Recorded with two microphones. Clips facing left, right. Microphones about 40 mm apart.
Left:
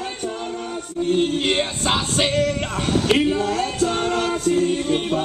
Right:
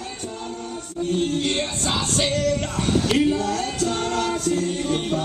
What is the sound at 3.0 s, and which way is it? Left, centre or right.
Choir, centre.